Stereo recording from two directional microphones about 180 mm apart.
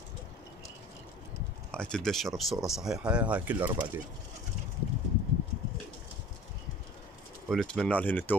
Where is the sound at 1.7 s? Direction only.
5° left (ahead or behind).